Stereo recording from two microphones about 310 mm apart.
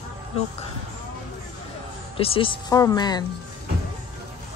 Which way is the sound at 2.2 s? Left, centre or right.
Centre.